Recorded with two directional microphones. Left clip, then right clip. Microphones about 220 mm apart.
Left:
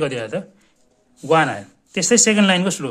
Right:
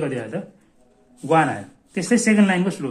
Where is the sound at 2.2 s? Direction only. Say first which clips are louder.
Left 3 dB; 45° left (ahead or behind).